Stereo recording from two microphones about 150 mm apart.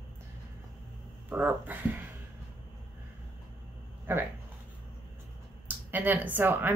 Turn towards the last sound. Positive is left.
turn(degrees=-15)  # may be behind; listen again after turning